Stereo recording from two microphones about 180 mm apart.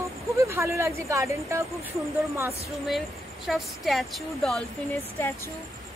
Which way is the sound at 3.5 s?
Centre (ahead or behind).